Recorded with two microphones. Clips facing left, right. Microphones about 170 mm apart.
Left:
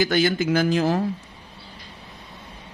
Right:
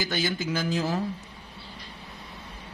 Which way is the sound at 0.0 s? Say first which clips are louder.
Left 8 dB; 65° left (ahead or behind).